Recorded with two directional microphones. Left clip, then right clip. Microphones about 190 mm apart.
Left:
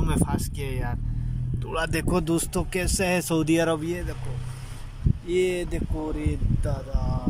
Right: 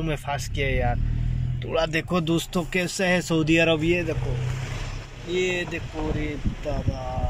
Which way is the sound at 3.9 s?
20° right (ahead or behind).